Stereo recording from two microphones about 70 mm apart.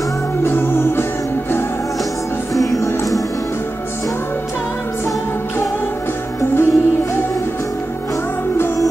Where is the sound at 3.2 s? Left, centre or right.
Left.